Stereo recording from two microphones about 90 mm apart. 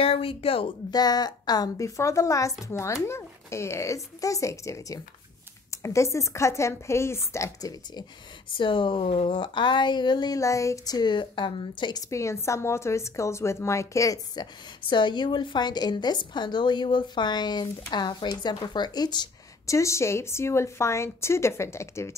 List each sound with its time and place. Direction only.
0.0 s speech: 90° left
0.9 s a woman's voice: 50° left (ahead or behind)
8.5 s a woman's voice: 70° left (ahead or behind); by 10.4 s 55° left (ahead or behind)
10.4 s a woman's voice: 35° left (ahead or behind)
11.0 s a woman's voice: 60° left (ahead or behind)
12.1 s a woman's voice: 35° left (ahead or behind)
14.9 s a woman's voice: 60° left (ahead or behind)
19.6 s a woman's voice: 35° left (ahead or behind)